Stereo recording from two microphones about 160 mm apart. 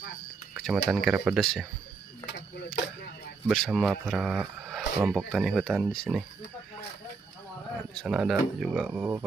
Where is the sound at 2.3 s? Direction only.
90° left.